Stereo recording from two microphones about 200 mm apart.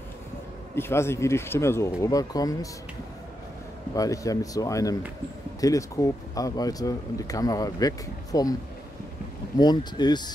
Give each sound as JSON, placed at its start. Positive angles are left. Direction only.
{"t": 0.7, "sound": "speech", "side_deg": 10}
{"t": 3.9, "sound": "speech", "side_deg": 15}
{"t": 9.6, "sound": "speech", "side_deg": 20}